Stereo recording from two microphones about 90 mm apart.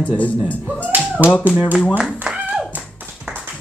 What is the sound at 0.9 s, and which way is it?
Tap, 20° right (ahead or behind).